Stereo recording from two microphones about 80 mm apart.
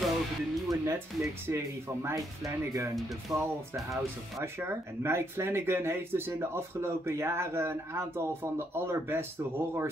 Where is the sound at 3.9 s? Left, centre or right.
Right.